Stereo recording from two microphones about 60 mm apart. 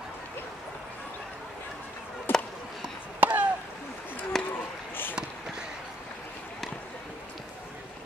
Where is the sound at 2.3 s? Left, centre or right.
Left.